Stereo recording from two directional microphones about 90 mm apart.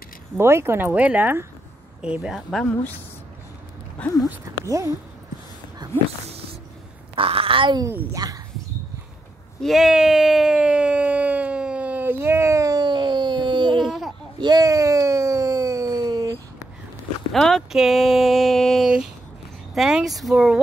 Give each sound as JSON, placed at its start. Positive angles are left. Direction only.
{"t": 0.4, "sound": "speech", "side_deg": -30}
{"t": 2.0, "sound": "speech", "side_deg": -10}
{"t": 4.0, "sound": "speech", "side_deg": 15}
{"t": 4.6, "sound": "speech", "side_deg": -35}
{"t": 5.8, "sound": "a sound", "side_deg": -55}
{"t": 7.2, "sound": "speech", "side_deg": -90}
{"t": 8.1, "sound": "speech", "side_deg": -40}
{"t": 9.6, "sound": "a sound", "side_deg": 0}
{"t": 14.4, "sound": "a sound", "side_deg": -45}
{"t": 17.3, "sound": "speech", "side_deg": 5}